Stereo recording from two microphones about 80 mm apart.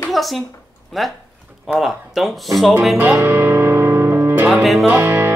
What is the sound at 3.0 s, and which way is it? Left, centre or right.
Music, right.